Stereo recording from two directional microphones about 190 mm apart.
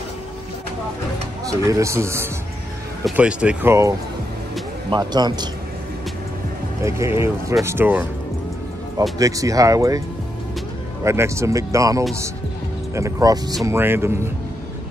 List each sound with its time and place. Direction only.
1.4 s a man's voice: 15° right (ahead or behind)
4.9 s a man's voice: 20° right (ahead or behind)
6.8 s a man's voice: 15° right (ahead or behind)
9.2 s a man's voice: 15° right (ahead or behind)
11.1 s a man's voice: 15° right (ahead or behind)